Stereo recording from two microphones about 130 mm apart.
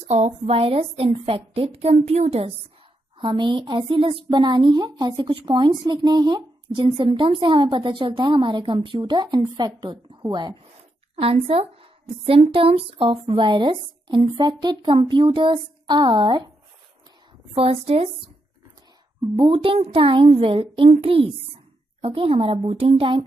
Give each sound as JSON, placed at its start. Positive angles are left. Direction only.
{"t": 0.0, "sound": "a woman's voice", "side_deg": -60}
{"t": 3.2, "sound": "a woman's voice", "side_deg": -40}
{"t": 11.1, "sound": "a woman's voice", "side_deg": -50}
{"t": 17.6, "sound": "a woman's voice", "side_deg": -50}
{"t": 19.2, "sound": "a woman's voice", "side_deg": -45}